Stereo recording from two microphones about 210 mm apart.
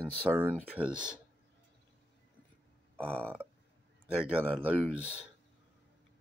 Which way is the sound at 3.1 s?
5° left (ahead or behind).